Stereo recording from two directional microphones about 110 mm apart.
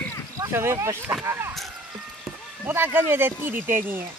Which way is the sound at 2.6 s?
20° right (ahead or behind).